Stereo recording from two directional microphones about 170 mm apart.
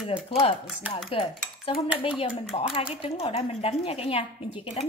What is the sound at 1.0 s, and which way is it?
Cutlery, 30° left (ahead or behind).